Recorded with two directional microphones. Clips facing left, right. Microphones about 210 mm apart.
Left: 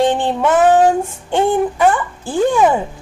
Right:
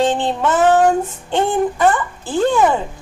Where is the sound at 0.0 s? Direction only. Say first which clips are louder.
Left 2 dB; 15° left (ahead or behind).